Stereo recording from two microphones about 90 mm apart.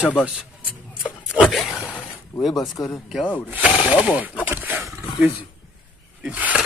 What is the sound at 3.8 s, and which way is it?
Speech, 10° right (ahead or behind).